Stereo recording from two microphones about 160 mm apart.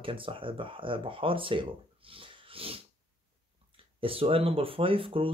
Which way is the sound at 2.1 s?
35° right (ahead or behind).